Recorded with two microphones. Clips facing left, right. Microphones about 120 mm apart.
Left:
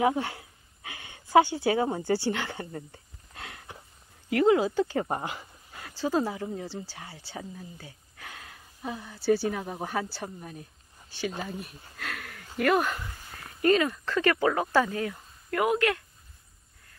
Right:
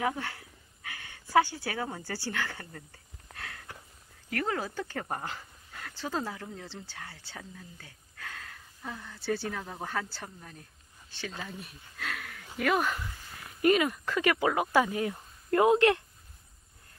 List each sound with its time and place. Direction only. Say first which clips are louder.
0.0 s speech: left 6 dB; 20° left (ahead or behind)
3.3 s a sound: left 1 dB; 20° left (ahead or behind)
4.3 s speech: left 10 dB; 20° left (ahead or behind)
11.4 s speech: left 5 dB; centre (ahead or behind)
13.6 s speech: left 1 dB; 10° right (ahead or behind)